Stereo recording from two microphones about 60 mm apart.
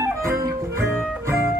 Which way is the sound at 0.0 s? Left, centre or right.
Right.